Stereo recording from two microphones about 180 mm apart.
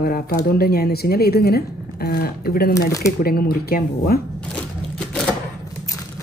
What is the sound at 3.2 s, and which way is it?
Speech, 55° left (ahead or behind).